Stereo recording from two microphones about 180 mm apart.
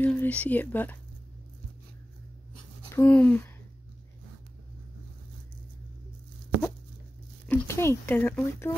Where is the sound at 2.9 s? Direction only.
10° left (ahead or behind).